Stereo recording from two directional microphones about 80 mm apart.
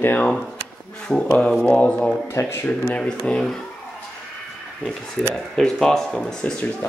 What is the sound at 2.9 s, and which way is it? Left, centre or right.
Speech, centre.